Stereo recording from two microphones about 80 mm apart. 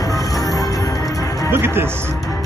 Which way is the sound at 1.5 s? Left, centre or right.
Right.